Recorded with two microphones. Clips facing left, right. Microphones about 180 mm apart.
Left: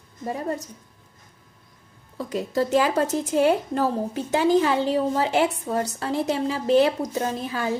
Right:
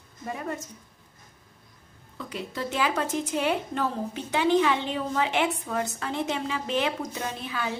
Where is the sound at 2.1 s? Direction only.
40° left (ahead or behind).